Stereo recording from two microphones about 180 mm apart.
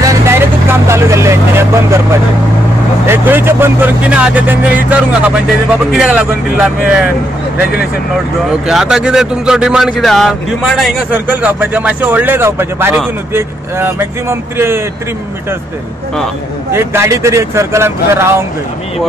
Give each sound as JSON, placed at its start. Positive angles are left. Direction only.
{"t": 0.0, "sound": "vehicle", "side_deg": -15}
{"t": 3.1, "sound": "speech", "side_deg": -10}
{"t": 8.6, "sound": "speech", "side_deg": -5}
{"t": 16.7, "sound": "speech", "side_deg": -15}